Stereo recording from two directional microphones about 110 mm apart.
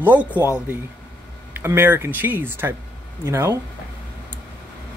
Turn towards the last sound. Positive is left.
turn(degrees=-25)  # may be behind; listen again after turning